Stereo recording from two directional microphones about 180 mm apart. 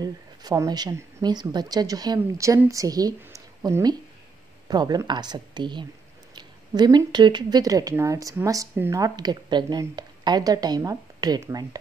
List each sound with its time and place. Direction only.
0.0 s speech: 20° right (ahead or behind)